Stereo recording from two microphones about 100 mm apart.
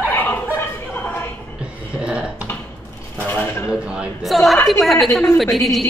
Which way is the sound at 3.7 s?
10° right (ahead or behind).